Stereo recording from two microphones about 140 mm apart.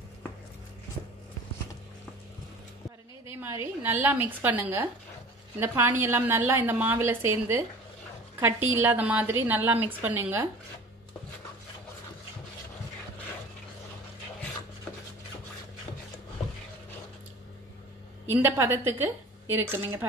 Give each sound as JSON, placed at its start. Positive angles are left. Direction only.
{"t": 3.3, "sound": "a sound", "side_deg": -15}
{"t": 3.8, "sound": "a woman's voice", "side_deg": -15}
{"t": 18.2, "sound": "a woman's voice", "side_deg": -15}